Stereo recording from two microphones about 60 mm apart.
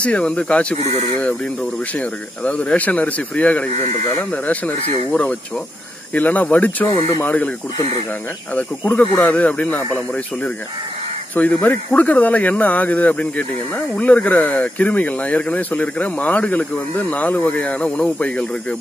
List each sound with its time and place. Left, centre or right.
0.0 s speech: left
8.5 s speech: left
11.3 s speech: left